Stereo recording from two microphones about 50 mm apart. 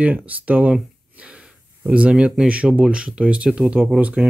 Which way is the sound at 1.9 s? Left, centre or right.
Right.